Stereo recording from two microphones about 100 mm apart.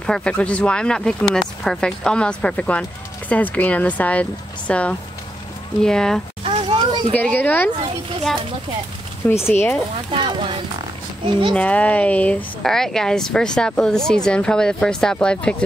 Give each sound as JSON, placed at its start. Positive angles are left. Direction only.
{"t": 0.0, "sound": "speech", "side_deg": 10}
{"t": 6.4, "sound": "children playing", "side_deg": -60}
{"t": 7.1, "sound": "speech", "side_deg": 15}
{"t": 9.3, "sound": "speech", "side_deg": 25}
{"t": 10.1, "sound": "speech", "side_deg": -55}
{"t": 11.5, "sound": "speech", "side_deg": 10}